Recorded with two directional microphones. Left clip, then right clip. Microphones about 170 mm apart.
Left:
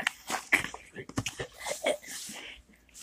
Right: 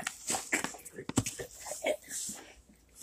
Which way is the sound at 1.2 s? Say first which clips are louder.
Left 6 dB; 5° left (ahead or behind).